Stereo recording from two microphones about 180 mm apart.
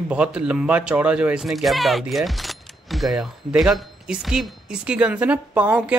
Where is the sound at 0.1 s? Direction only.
5° right (ahead or behind).